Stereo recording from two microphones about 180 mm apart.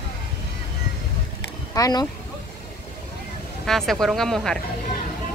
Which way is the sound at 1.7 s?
20° left (ahead or behind).